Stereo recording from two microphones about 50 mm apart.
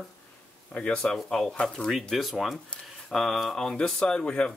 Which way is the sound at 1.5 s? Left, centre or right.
Left.